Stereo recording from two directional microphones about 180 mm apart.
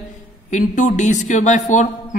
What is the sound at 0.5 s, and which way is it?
Speech, 45° left (ahead or behind).